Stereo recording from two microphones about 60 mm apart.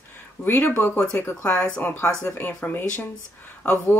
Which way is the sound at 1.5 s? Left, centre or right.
Centre.